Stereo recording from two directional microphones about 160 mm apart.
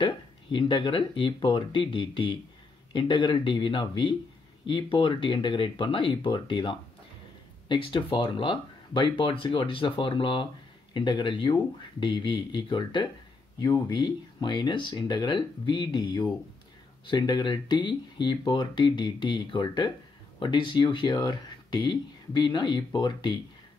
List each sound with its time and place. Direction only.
0.0 s speech: 30° left (ahead or behind)